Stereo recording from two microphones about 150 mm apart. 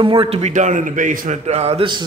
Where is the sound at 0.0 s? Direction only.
35° right (ahead or behind); by 1.4 s 60° right (ahead or behind).